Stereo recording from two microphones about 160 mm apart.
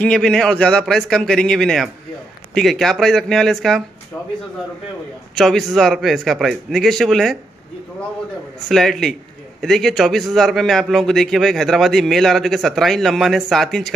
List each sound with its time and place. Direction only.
0.0 s a man's voice: 5° left (ahead or behind)
5.3 s a man's voice: centre (ahead or behind)
8.6 s a man's voice: centre (ahead or behind)